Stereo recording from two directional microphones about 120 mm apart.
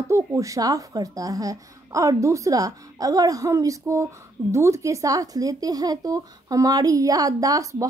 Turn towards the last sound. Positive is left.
turn(degrees=-30)  # may be behind; listen again after turning